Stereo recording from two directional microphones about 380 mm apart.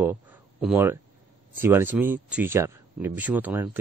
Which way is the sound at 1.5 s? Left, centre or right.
Centre.